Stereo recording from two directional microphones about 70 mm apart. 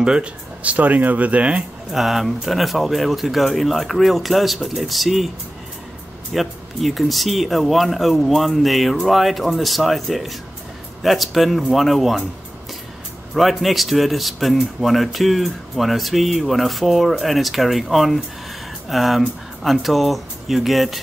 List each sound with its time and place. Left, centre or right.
0.0 s speech: centre
2.0 s a man's voice: centre
6.3 s a man's voice: centre
13.3 s a man's voice: centre